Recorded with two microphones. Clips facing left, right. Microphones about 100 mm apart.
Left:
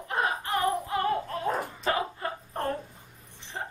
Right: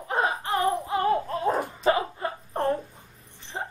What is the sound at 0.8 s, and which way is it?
Music, 20° right (ahead or behind).